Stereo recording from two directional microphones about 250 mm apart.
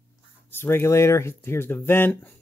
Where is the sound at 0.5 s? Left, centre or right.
Centre.